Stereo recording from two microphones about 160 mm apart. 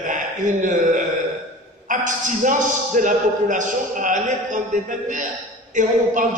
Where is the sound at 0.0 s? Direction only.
50° right (ahead or behind).